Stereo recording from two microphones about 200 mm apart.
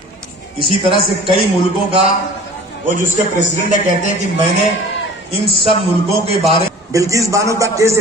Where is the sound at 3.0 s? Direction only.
40° right (ahead or behind).